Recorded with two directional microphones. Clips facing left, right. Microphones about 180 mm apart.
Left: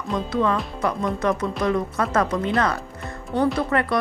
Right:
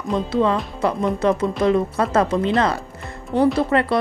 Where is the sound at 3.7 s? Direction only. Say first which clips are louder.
Right 4 dB; 20° right (ahead or behind).